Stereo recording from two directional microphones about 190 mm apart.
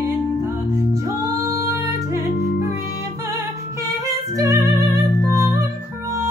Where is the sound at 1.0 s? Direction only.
15° right (ahead or behind).